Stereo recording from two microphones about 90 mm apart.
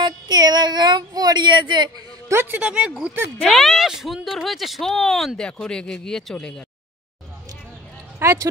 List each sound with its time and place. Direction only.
0.0 s speech: 50° right (ahead or behind)
2.2 s a man's voice: 25° right (ahead or behind)
3.4 s speech: centre (ahead or behind)
8.2 s speech: 30° right (ahead or behind)